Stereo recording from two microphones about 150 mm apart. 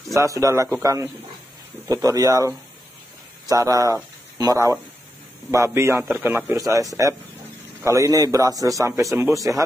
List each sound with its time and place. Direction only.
0.1 s a man's voice: 20° right (ahead or behind)